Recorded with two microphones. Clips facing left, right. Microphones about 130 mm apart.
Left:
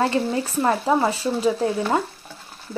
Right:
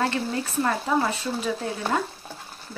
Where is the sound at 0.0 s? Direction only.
25° left (ahead or behind).